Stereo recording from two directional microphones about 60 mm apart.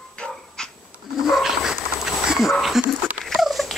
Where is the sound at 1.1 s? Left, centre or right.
Centre.